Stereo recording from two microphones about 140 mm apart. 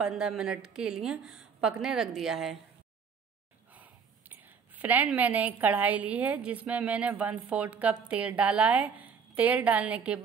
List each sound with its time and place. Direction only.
0.0 s a woman's voice: 5° right (ahead or behind)
3.7 s speech: 10° right (ahead or behind)